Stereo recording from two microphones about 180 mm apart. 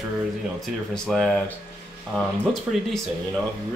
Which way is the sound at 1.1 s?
Centre (ahead or behind).